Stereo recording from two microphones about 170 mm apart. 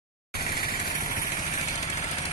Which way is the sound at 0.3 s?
65° left (ahead or behind).